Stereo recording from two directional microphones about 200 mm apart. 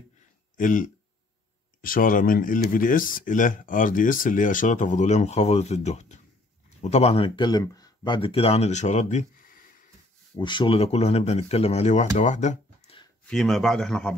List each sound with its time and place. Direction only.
0.6 s speech: 40° left (ahead or behind)
10.3 s speech: 25° left (ahead or behind)
13.2 s speech: 5° left (ahead or behind)